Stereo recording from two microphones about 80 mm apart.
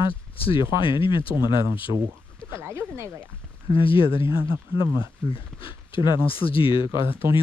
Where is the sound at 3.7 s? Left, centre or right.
Left.